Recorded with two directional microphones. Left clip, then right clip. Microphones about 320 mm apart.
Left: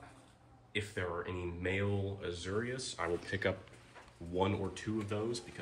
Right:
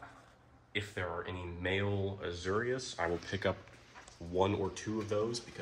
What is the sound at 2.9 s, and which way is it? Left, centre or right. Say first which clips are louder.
Speech: right 1 dB; right.